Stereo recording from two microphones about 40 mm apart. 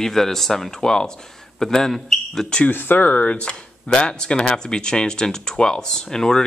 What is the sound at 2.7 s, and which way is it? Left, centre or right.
Speech, left.